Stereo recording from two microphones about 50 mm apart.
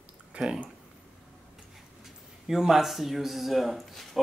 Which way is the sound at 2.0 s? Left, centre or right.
Centre.